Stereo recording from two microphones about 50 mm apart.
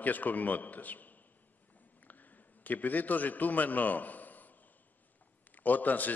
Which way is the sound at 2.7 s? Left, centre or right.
Left.